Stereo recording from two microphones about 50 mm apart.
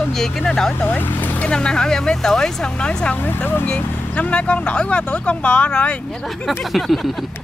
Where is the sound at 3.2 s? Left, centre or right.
Left.